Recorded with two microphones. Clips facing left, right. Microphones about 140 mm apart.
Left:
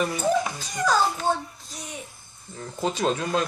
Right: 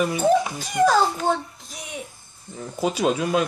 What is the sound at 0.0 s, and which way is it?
Speech, 10° right (ahead or behind).